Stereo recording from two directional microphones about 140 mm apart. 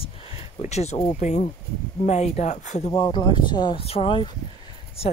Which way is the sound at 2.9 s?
35° left (ahead or behind).